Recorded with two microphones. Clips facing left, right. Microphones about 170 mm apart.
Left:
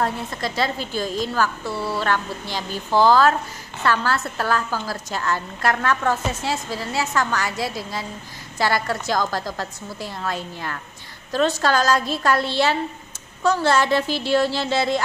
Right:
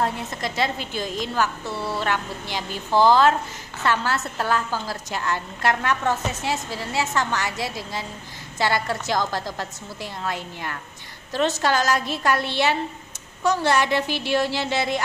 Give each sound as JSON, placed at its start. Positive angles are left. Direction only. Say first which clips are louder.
{"t": 0.0, "sound": "a woman's voice", "louder": "left 1 dB", "side_deg": -20}